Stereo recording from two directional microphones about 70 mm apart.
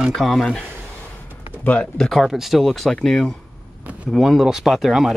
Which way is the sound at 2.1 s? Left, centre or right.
Centre.